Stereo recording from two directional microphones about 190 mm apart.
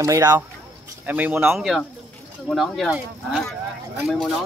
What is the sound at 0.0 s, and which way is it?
Speech, 20° right (ahead or behind).